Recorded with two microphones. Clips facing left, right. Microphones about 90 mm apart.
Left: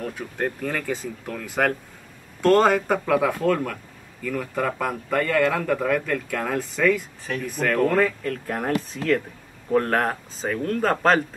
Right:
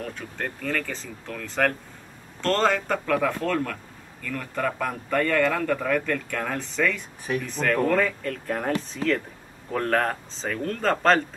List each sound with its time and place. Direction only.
0.0 s speech: 10° left (ahead or behind)